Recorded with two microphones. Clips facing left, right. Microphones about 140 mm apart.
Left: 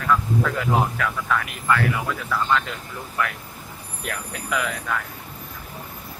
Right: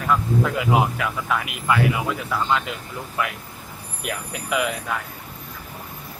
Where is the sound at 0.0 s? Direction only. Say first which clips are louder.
Right 1 dB; 15° right (ahead or behind).